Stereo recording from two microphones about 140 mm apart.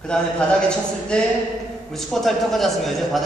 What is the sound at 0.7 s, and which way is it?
Speech, 5° left (ahead or behind).